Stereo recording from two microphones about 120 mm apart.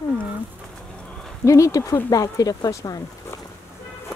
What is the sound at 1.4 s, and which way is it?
Speech, 25° left (ahead or behind).